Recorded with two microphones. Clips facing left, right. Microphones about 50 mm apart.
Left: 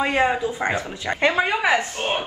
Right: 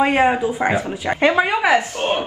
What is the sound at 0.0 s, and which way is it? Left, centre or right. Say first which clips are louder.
A woman's voice: right 4 dB; centre.